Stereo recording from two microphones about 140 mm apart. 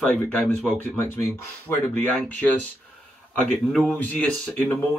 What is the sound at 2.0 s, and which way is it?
Speech, 10° left (ahead or behind).